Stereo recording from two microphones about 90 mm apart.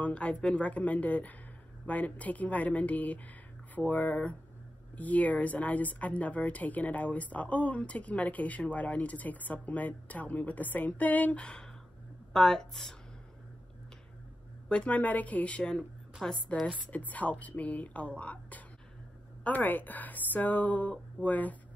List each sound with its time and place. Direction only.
0.0 s speech: 15° left (ahead or behind)
14.7 s a woman's voice: 15° left (ahead or behind)